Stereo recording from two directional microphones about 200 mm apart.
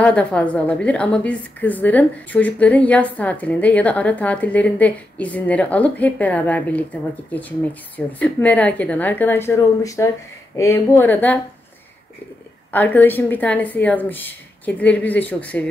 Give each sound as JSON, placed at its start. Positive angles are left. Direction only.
{"t": 0.0, "sound": "a woman's voice", "side_deg": 5}
{"t": 12.7, "sound": "a woman's voice", "side_deg": 10}